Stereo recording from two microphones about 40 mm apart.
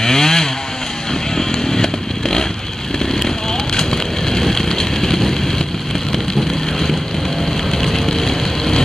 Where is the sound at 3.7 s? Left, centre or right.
Centre.